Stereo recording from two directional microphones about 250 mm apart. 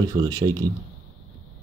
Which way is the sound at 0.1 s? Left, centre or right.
Centre.